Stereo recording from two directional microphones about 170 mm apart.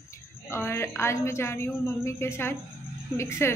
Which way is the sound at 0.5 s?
15° left (ahead or behind).